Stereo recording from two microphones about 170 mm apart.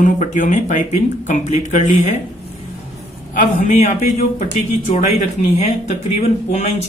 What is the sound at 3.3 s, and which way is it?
Speech, 50° left (ahead or behind).